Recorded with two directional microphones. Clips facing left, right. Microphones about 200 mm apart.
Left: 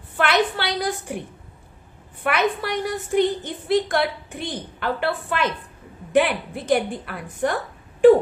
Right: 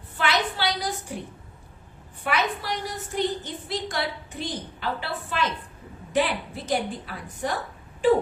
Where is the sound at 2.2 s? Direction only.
60° left (ahead or behind).